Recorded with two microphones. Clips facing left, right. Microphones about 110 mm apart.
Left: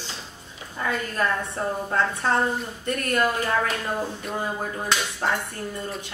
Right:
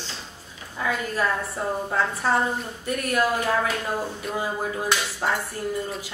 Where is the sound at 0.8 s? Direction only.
5° right (ahead or behind).